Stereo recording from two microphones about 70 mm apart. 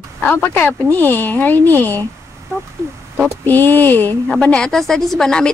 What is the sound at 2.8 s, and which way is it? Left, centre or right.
Speech, right.